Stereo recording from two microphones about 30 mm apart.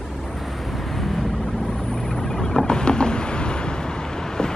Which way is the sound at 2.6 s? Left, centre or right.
Left.